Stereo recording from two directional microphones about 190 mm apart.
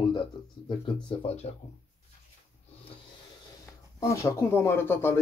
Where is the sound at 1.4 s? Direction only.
35° left (ahead or behind).